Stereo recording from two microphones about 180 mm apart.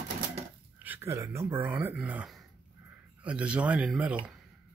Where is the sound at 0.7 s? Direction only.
10° right (ahead or behind).